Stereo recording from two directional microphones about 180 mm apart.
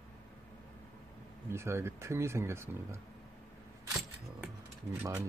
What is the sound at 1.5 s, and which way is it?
Speech, 15° right (ahead or behind).